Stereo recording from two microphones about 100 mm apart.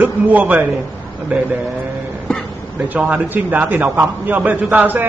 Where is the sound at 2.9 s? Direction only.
15° right (ahead or behind).